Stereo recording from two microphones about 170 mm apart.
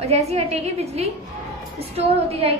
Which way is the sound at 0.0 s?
35° right (ahead or behind).